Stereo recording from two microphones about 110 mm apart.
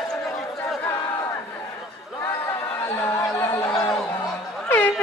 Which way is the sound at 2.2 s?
20° left (ahead or behind).